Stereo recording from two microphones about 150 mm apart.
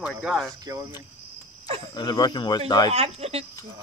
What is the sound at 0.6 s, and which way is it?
Speech, 25° right (ahead or behind).